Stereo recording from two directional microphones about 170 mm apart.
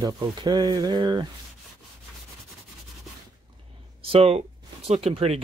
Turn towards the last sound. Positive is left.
turn(degrees=-35)  # may be behind; listen again after turning